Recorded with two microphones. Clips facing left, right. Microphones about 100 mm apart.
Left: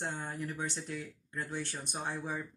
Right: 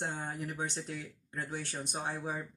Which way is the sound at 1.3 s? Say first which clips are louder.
Even; 15° right (ahead or behind).